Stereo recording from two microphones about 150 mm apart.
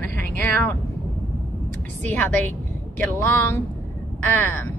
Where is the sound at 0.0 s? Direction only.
10° left (ahead or behind).